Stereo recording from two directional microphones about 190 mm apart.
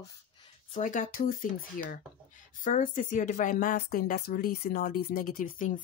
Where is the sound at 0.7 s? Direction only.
40° left (ahead or behind).